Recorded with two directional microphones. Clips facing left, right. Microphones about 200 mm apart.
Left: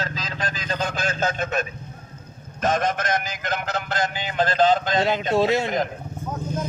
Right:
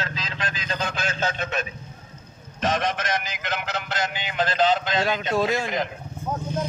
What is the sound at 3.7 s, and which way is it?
A man's voice, 40° left (ahead or behind).